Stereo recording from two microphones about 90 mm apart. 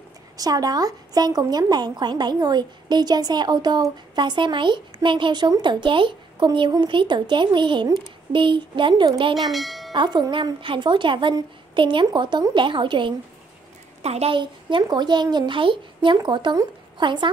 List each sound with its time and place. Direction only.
0.4 s a woman's voice: 45° right (ahead or behind); by 9.3 s 65° right (ahead or behind)
9.5 s bell: centre (ahead or behind)
9.9 s a child's voice: 50° right (ahead or behind)
14.2 s a child's voice: 65° right (ahead or behind)